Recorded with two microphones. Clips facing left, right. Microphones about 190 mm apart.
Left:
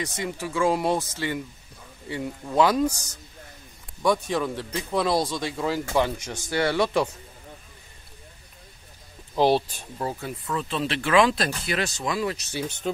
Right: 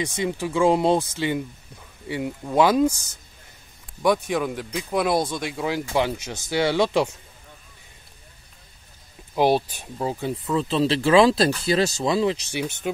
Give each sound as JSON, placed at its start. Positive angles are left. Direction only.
{"t": 0.0, "sound": "speech", "side_deg": -20}
{"t": 4.0, "sound": "speech", "side_deg": -15}
{"t": 9.3, "sound": "speech", "side_deg": -10}
{"t": 12.8, "sound": "speech", "side_deg": -10}